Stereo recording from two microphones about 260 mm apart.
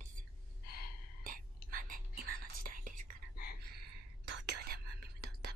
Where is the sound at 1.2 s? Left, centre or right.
Right.